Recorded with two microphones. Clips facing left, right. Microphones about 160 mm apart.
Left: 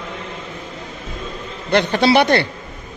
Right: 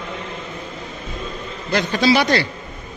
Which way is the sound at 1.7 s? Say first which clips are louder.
Left 2 dB; 60° left (ahead or behind).